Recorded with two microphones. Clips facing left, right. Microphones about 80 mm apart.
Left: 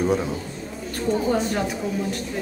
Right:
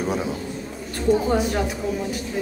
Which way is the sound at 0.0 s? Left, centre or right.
Centre.